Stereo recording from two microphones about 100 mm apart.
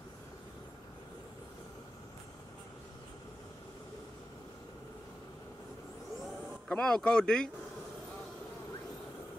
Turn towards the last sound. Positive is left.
turn(degrees=10)  # may be behind; listen again after turning